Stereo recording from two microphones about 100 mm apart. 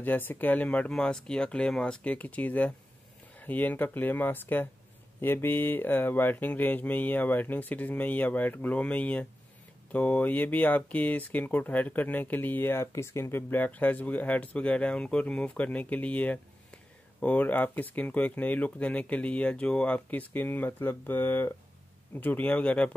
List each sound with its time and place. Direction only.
0.0 s speech: 20° left (ahead or behind)